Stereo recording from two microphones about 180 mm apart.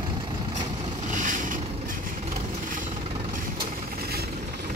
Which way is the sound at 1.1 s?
45° right (ahead or behind).